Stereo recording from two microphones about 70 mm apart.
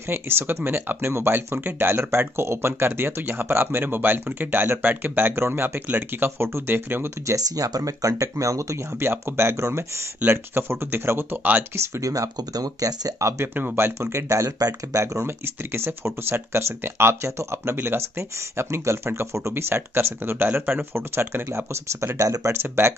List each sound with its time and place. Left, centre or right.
0.1 s speech: right
7.2 s speech: right
9.0 s speech: right
12.0 s speech: right
13.6 s speech: right
22.5 s speech: right